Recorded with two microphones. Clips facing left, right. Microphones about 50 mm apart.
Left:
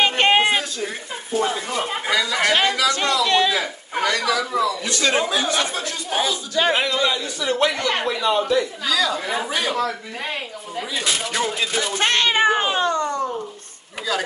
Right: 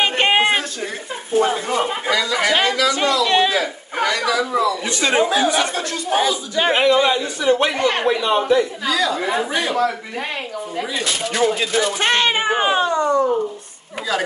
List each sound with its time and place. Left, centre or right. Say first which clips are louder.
0.2 s a sound: right 1 dB; centre
1.4 s a man's voice: right 5 dB; centre
2.0 s speech: right 2 dB; centre
2.3 s speech: right 1 dB; centre
2.9 s a man's voice: right 2 dB; centre
3.5 s a sound: right 3 dB; centre
4.4 s a man's voice: right 3 dB; centre
6.5 s speech: right 5 dB; right
8.8 s speech: right 2 dB; centre
11.0 s speech: right 3 dB; centre